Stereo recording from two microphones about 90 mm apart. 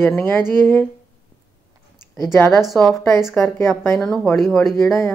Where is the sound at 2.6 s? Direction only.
Centre (ahead or behind).